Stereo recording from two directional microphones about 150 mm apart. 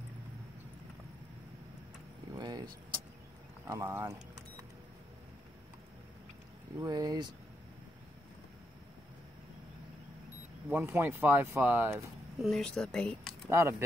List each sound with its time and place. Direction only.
2.3 s vehicle: 25° right (ahead or behind)
3.6 s speech: 20° right (ahead or behind)
6.8 s speech: 25° right (ahead or behind)
10.7 s speech: 15° right (ahead or behind)
12.4 s speech: centre (ahead or behind)
13.5 s speech: 20° right (ahead or behind)